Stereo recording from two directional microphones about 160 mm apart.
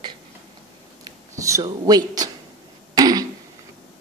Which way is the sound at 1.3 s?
20° right (ahead or behind).